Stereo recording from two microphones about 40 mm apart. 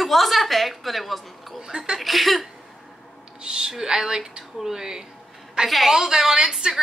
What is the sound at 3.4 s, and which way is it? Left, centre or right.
A woman's voice, centre.